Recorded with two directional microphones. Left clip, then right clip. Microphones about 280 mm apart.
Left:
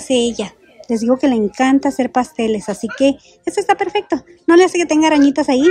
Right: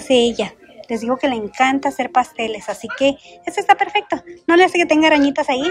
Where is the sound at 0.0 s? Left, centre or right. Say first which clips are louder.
Right 2 dB; centre.